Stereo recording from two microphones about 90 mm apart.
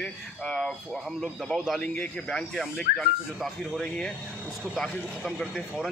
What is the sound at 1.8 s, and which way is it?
Speech, 15° left (ahead or behind).